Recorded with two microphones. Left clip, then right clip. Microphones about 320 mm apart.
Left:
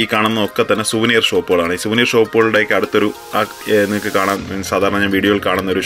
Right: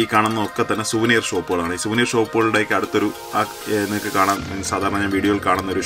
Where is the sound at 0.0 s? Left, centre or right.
Centre.